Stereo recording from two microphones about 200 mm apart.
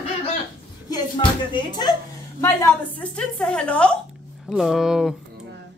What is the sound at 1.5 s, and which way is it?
A woman's voice, 20° left (ahead or behind).